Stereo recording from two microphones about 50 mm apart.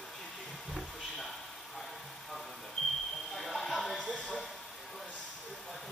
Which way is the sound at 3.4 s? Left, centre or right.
Centre.